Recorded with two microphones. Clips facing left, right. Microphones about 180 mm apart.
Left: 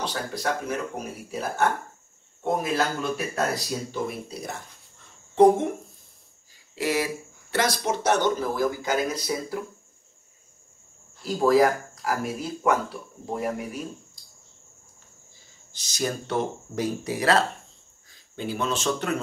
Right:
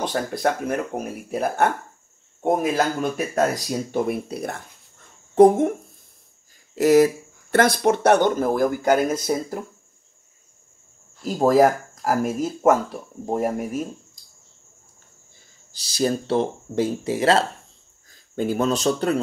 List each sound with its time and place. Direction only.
0.0 s speech: 55° right (ahead or behind)
3.9 s speech: 60° right (ahead or behind)
6.7 s speech: 45° right (ahead or behind)
7.5 s speech: 55° right (ahead or behind)
11.3 s speech: 45° right (ahead or behind)
15.7 s speech: 35° right (ahead or behind)
18.1 s a man's voice: 50° right (ahead or behind)